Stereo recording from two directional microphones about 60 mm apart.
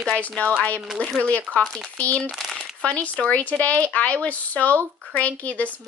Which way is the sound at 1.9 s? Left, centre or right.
Left.